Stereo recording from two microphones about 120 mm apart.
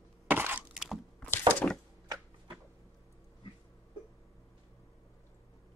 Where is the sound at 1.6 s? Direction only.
10° left (ahead or behind).